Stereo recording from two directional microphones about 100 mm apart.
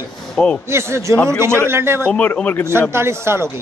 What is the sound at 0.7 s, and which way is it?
Speech, 25° right (ahead or behind).